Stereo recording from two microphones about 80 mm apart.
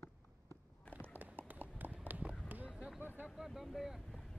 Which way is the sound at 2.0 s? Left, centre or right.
Centre.